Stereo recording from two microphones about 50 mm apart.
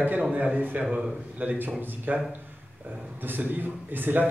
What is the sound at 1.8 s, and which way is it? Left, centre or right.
Speech, right.